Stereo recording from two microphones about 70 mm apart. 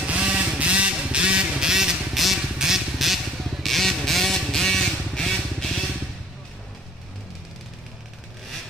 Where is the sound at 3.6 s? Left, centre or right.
Centre.